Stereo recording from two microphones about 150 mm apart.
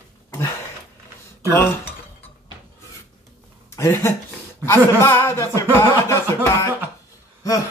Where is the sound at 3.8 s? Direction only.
15° left (ahead or behind).